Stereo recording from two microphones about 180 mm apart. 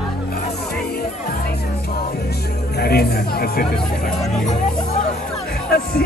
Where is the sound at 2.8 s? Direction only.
60° left (ahead or behind).